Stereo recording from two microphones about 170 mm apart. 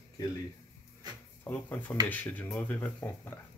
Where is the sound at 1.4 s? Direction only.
10° left (ahead or behind).